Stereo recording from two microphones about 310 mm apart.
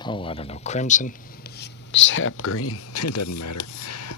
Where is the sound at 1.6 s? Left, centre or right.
Left.